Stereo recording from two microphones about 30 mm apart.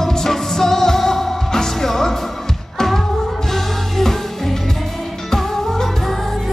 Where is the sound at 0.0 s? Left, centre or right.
Centre.